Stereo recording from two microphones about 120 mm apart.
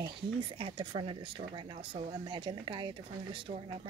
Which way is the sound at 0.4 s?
45° right (ahead or behind).